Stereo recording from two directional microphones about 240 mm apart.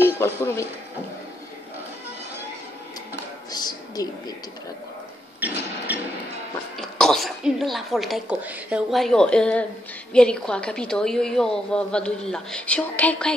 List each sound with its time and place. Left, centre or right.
0.0 s speech: centre
3.5 s a sound: centre
6.8 s a woman's voice: centre